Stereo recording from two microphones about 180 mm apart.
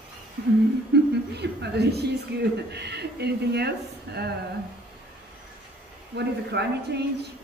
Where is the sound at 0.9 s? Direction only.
70° right (ahead or behind).